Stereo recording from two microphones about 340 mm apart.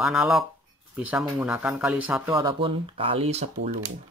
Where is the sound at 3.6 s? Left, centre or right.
Right.